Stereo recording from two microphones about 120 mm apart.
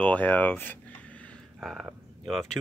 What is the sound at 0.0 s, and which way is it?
Speech, 10° left (ahead or behind).